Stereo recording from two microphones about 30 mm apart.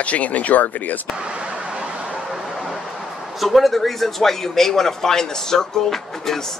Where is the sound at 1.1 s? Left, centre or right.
Right.